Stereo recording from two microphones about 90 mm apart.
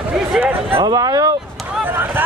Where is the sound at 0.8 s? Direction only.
45° right (ahead or behind).